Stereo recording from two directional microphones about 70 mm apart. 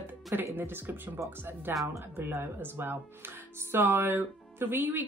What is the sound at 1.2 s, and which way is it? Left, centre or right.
Speech, right.